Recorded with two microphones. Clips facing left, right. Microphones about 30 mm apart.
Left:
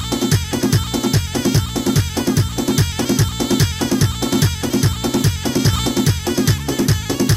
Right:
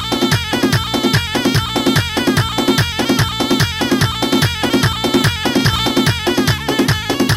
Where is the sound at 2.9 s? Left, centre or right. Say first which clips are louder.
Right 3 dB; right.